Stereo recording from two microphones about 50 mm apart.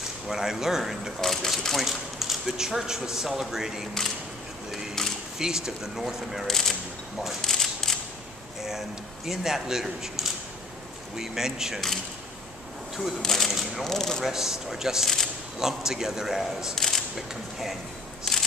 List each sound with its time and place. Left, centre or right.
0.3 s speech: centre
1.2 s speech: centre
1.8 s speech: centre
5.0 s a sound: centre
5.4 s speech: centre
6.4 s speech: centre
7.2 s camera: centre
8.6 s speech: centre
13.2 s speech: centre
13.8 s speech: centre
14.2 s speech: centre
16.7 s a sound: centre
17.3 s speech: centre
18.3 s a sound: centre